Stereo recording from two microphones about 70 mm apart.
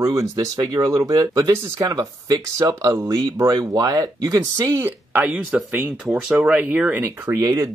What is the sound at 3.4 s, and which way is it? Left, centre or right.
Speech, right.